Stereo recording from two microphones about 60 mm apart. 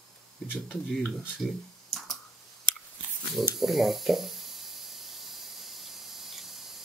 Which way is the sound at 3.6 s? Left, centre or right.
Centre.